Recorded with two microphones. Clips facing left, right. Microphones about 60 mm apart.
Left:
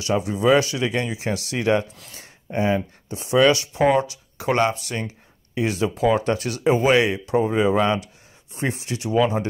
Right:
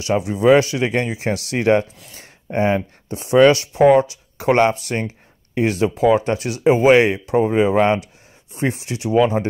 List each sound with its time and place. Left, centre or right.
0.0 s speech: right